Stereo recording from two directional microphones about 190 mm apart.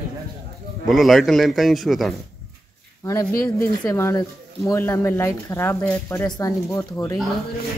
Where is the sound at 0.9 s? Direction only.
Centre (ahead or behind).